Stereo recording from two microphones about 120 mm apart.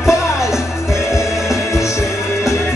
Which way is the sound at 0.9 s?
25° left (ahead or behind).